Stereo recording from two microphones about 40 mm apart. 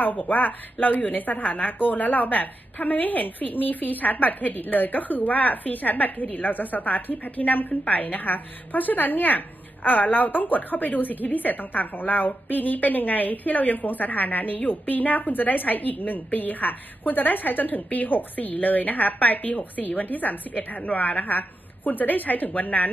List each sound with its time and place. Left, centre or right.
0.0 s a woman's voice: left